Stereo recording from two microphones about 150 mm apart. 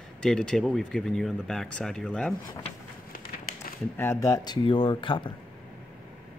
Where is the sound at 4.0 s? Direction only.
20° left (ahead or behind).